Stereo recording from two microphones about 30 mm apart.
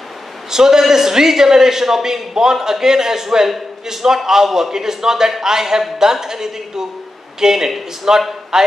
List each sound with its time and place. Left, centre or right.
0.5 s a man's voice: centre